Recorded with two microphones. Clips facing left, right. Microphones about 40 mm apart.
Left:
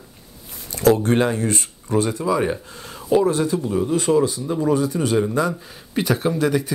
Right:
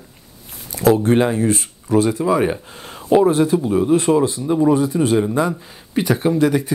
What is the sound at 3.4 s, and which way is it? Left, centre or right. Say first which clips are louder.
A man's voice: right 5 dB; right.